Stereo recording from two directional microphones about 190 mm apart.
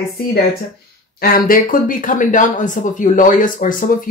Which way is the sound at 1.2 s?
50° left (ahead or behind).